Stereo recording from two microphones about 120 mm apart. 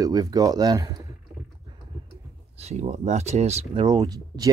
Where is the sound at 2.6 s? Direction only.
65° right (ahead or behind).